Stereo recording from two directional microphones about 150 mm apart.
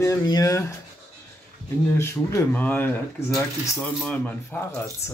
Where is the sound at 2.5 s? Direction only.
10° left (ahead or behind).